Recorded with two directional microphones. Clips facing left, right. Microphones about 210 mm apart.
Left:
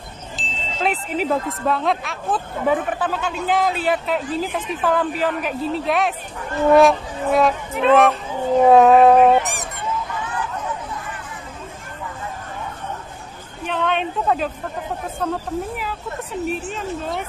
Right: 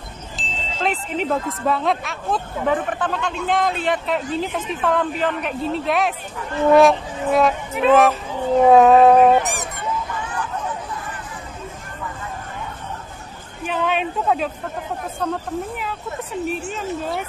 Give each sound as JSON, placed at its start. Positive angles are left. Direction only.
{"t": 0.4, "sound": "speech", "side_deg": 5}
{"t": 13.7, "sound": "a woman's voice", "side_deg": -5}
{"t": 16.4, "sound": "speech", "side_deg": 0}